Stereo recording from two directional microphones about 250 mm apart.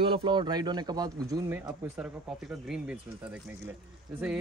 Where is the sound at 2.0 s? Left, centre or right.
Centre.